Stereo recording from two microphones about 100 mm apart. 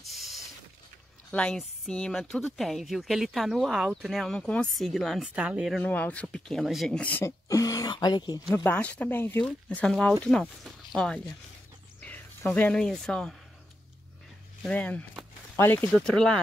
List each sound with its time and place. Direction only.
0.0 s vehicle: centre (ahead or behind)
1.3 s speech: 10° left (ahead or behind)
5.3 s speech: 10° right (ahead or behind)
5.9 s speech: 15° left (ahead or behind)
6.6 s speech: 5° right (ahead or behind)
6.9 s speech: 15° left (ahead or behind)
7.2 s speech: 35° left (ahead or behind)
8.6 s speech: 15° left (ahead or behind)
9.8 s speech: 10° left (ahead or behind)
12.0 s speech: 15° left (ahead or behind)
14.7 s speech: 15° left (ahead or behind)
15.9 s speech: 10° left (ahead or behind)